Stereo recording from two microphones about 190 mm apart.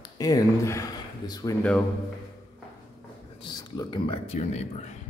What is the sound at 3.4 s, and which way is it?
A man's voice, 20° left (ahead or behind).